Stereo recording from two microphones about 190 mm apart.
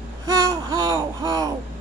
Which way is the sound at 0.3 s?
15° right (ahead or behind).